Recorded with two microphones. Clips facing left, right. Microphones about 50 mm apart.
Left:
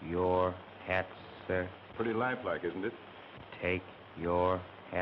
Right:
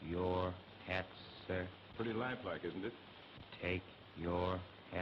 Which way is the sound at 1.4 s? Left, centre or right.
Left.